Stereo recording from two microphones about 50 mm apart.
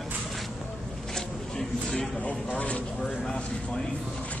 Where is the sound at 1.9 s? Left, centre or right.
Left.